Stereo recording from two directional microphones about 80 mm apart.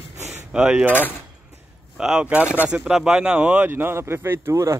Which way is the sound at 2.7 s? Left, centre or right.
Centre.